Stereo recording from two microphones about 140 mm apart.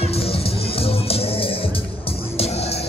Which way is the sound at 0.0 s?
45° left (ahead or behind).